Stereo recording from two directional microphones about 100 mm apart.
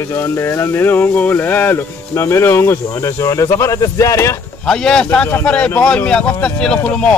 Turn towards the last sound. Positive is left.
turn(degrees=10)  # may be behind; listen again after turning